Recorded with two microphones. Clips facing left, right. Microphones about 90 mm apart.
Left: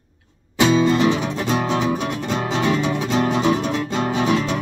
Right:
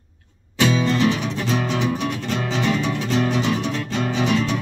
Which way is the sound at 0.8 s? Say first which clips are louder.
Left 2 dB; 20° left (ahead or behind).